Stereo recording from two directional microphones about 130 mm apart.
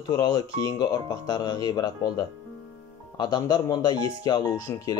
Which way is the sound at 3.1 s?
35° left (ahead or behind).